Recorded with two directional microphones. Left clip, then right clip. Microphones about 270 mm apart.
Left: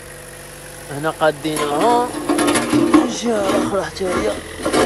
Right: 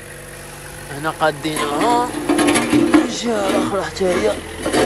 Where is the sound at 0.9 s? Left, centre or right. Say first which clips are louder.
Left 1 dB; centre.